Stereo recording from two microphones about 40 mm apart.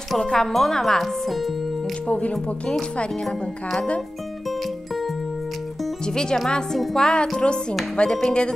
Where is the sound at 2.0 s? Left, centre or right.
Left.